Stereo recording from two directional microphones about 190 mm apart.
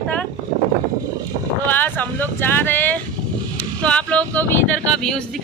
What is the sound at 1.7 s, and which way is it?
Vehicle, 10° left (ahead or behind).